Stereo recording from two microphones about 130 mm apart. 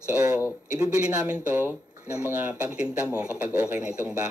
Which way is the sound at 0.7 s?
10° right (ahead or behind).